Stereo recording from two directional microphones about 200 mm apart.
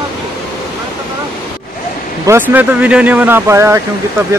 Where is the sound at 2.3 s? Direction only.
10° right (ahead or behind).